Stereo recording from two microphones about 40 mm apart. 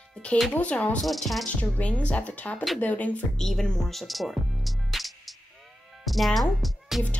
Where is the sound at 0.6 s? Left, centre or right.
Left.